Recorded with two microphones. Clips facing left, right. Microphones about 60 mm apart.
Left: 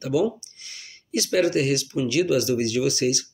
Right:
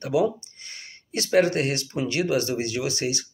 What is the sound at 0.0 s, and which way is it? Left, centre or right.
Speech, right.